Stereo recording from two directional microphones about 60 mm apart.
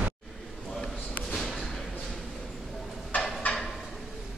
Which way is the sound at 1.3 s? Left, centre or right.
Centre.